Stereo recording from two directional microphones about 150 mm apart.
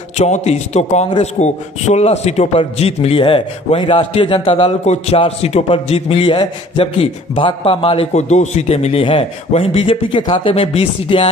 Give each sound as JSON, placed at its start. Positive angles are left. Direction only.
{"t": 0.2, "sound": "a man's voice", "side_deg": 50}